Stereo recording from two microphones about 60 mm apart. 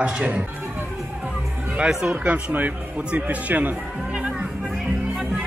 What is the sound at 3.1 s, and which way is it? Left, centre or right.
Speech, right.